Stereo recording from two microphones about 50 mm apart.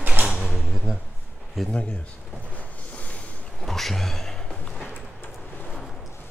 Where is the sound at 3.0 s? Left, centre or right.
Left.